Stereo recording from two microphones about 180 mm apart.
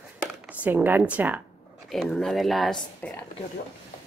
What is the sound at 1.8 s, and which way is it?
Speech, 5° left (ahead or behind).